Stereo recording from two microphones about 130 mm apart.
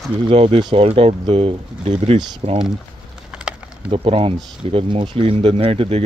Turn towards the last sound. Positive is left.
turn(degrees=-45)  # may be behind; listen again after turning